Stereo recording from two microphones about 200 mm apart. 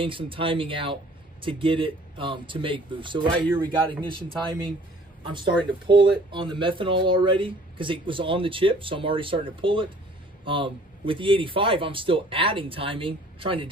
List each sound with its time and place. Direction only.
0.0 s speech: 25° right (ahead or behind)
5.3 s speech: 25° right (ahead or behind)